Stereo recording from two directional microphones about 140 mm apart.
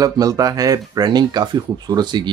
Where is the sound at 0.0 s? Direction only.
25° right (ahead or behind).